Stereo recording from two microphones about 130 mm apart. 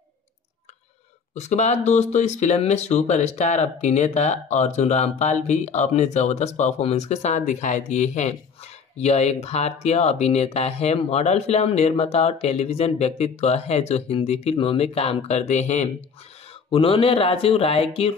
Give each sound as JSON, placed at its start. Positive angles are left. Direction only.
{"t": 1.3, "sound": "speech", "side_deg": 60}
{"t": 16.7, "sound": "speech", "side_deg": 45}